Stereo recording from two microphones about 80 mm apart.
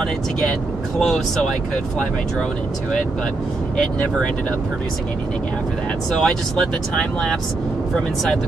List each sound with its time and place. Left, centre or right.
0.9 s speech: centre
6.1 s speech: centre
7.9 s speech: centre